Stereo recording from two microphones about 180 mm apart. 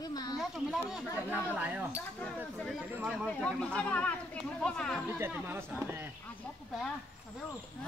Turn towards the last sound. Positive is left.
turn(degrees=-10)  # may be behind; listen again after turning